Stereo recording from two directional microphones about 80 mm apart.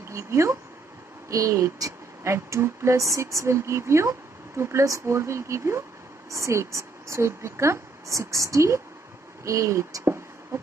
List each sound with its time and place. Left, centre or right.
0.1 s speech: right